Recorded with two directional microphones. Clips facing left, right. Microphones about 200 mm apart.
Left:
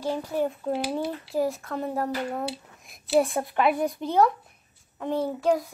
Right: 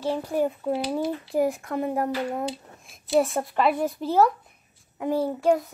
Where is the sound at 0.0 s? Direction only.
10° right (ahead or behind).